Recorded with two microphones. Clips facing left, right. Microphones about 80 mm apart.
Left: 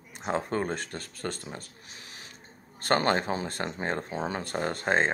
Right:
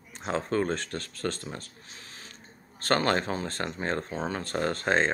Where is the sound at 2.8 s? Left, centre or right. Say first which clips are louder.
Even; centre.